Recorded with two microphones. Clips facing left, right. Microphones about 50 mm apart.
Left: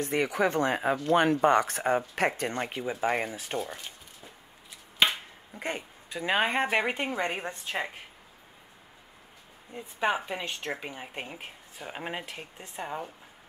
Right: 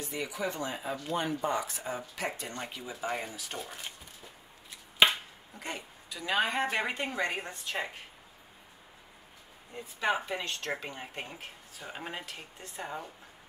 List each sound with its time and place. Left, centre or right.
0.0 s speech: left
3.5 s speech: centre
5.6 s a woman's voice: left
7.3 s speech: left
10.1 s speech: centre